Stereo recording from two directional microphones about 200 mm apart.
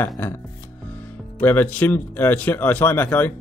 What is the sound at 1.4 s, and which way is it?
Speech, 10° left (ahead or behind).